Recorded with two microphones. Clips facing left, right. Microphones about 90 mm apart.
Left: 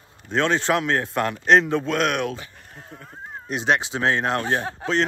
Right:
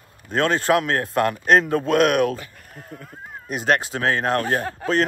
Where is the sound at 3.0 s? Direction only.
40° left (ahead or behind).